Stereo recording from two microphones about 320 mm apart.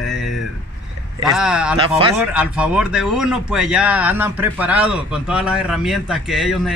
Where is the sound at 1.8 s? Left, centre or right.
Centre.